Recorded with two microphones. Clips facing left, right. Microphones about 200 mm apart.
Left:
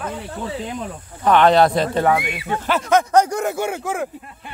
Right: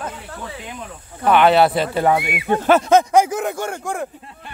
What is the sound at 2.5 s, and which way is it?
Speech, 45° right (ahead or behind).